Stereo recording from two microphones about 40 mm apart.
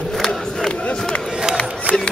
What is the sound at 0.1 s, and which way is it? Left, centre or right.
Battle cry, centre.